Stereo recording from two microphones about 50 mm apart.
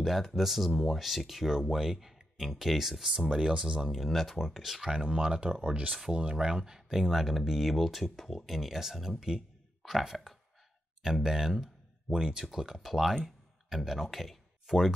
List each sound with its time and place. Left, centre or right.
0.0 s speech: centre
3.8 s speech: centre
4.9 s speech: centre